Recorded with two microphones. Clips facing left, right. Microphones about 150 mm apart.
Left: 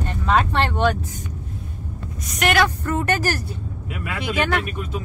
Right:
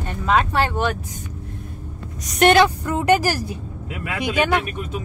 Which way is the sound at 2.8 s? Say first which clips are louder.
Right 4 dB; 15° right (ahead or behind).